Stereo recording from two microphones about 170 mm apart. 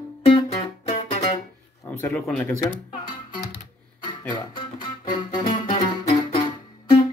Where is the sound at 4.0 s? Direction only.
25° left (ahead or behind).